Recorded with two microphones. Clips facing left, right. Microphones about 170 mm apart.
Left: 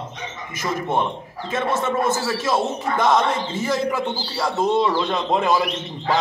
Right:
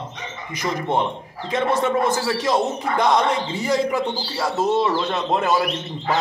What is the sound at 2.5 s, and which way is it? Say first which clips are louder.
Speech: left 1 dB; 15° right (ahead or behind).